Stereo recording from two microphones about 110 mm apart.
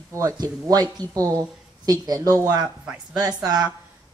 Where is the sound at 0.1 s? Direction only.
30° right (ahead or behind).